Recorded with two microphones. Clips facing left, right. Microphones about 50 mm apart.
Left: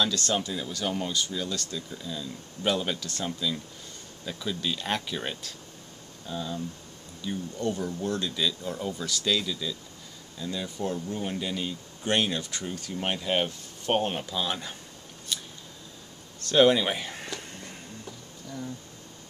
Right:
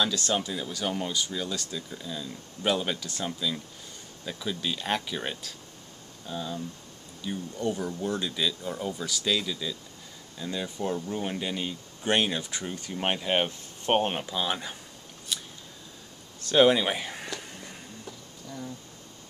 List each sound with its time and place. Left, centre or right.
0.0 s speech: centre
15.3 s scissors: centre
16.3 s a sound: centre